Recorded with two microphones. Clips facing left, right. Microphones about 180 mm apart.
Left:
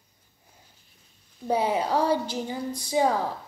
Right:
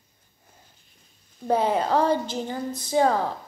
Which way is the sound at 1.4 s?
10° left (ahead or behind).